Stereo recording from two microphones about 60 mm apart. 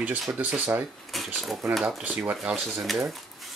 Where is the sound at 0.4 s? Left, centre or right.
Right.